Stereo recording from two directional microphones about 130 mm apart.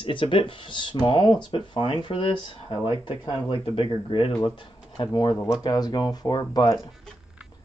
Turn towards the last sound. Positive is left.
turn(degrees=30)  # may be behind; listen again after turning